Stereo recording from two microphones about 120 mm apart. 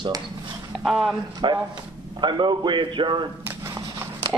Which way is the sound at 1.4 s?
40° right (ahead or behind).